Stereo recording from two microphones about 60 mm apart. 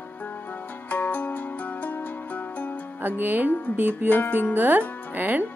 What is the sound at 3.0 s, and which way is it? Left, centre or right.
Speech, right.